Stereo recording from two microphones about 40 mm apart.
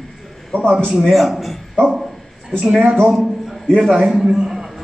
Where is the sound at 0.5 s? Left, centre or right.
Left.